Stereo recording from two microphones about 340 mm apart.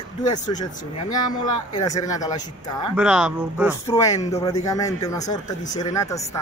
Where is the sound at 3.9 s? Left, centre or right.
Centre.